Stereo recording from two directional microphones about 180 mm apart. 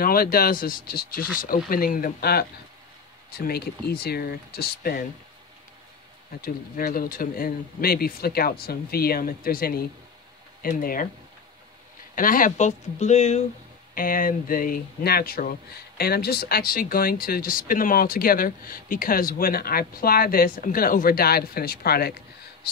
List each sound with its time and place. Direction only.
0.0 s speech: 55° left (ahead or behind)
6.4 s speech: 55° left (ahead or behind)
12.2 s speech: 50° left (ahead or behind)
13.9 s speech: 50° left (ahead or behind)